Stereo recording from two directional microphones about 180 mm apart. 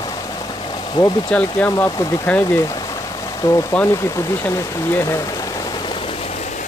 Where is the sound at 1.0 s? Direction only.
20° left (ahead or behind).